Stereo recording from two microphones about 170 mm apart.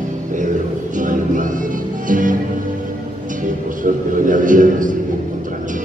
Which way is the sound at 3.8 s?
50° right (ahead or behind).